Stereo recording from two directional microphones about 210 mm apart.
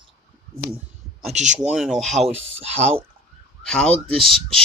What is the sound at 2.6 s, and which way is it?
Speech, 25° right (ahead or behind).